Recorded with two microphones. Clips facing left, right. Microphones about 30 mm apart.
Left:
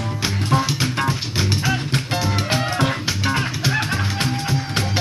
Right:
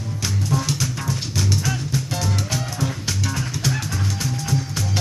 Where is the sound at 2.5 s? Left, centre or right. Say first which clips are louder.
Left 6 dB; left.